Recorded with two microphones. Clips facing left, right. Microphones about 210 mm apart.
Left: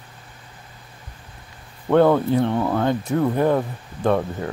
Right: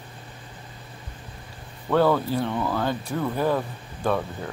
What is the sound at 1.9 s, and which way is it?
Speech, 20° left (ahead or behind).